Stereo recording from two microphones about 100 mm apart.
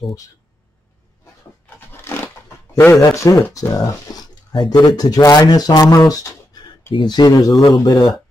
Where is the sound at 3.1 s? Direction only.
30° left (ahead or behind).